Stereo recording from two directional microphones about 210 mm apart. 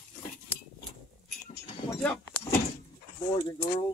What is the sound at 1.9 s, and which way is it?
Speech, 10° left (ahead or behind).